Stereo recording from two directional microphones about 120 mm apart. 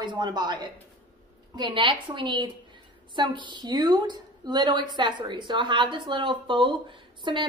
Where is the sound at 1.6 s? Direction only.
40° right (ahead or behind).